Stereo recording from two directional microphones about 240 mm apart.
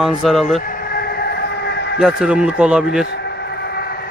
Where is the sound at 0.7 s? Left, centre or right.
Left.